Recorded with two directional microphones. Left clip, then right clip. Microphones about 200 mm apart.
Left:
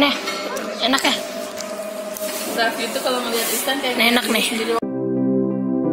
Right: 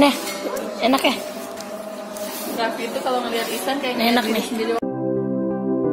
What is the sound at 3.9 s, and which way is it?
Speech, centre (ahead or behind).